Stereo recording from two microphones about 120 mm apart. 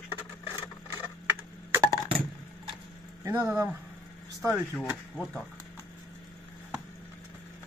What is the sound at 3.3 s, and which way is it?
Speech, 20° right (ahead or behind).